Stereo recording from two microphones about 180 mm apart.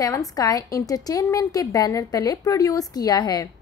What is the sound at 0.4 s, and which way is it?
A woman's voice, 20° left (ahead or behind).